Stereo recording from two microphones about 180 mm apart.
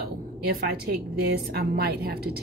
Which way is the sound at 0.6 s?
60° right (ahead or behind).